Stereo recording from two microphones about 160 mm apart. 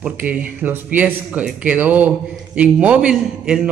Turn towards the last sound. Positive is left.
turn(degrees=-5)  # may be behind; listen again after turning